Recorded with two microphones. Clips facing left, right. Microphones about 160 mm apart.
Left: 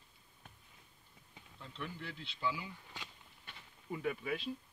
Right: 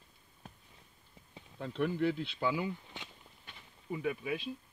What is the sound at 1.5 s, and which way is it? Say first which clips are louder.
Speech: right 14 dB; 60° right (ahead or behind).